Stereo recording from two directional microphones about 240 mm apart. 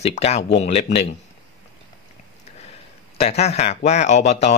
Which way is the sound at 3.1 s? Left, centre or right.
Left.